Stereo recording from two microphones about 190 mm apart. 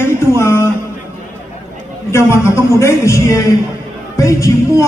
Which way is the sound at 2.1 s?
15° left (ahead or behind).